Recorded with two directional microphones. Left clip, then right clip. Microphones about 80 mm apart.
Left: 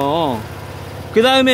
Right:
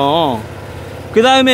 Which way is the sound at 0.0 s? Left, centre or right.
Right.